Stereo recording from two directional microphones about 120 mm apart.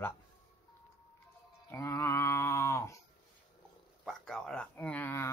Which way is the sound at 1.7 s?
25° left (ahead or behind).